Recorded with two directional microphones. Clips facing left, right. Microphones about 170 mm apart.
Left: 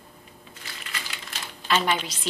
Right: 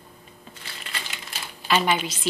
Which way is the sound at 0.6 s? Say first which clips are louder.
Right 1 dB; 30° right (ahead or behind).